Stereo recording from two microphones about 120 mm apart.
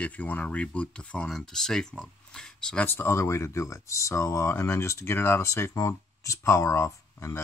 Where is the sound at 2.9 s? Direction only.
20° left (ahead or behind).